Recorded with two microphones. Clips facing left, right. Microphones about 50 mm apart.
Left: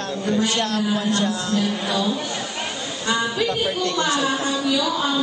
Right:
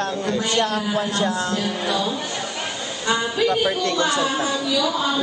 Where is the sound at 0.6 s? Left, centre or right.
Centre.